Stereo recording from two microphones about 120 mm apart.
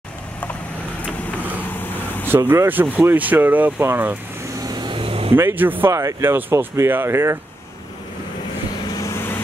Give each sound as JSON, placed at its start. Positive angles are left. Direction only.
{"t": 2.2, "sound": "speech", "side_deg": -20}
{"t": 4.6, "sound": "vehicle", "side_deg": -40}
{"t": 5.3, "sound": "speech", "side_deg": -15}
{"t": 8.9, "sound": "vehicle", "side_deg": 25}